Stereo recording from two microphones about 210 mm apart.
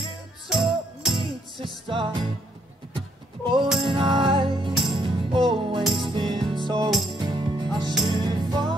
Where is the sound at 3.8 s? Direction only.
25° right (ahead or behind).